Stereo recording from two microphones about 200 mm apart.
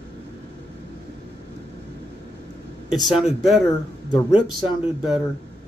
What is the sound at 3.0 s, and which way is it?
Speech, centre (ahead or behind).